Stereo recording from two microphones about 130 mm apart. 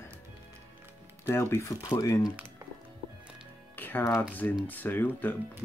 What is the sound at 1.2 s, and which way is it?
Speech, 20° left (ahead or behind).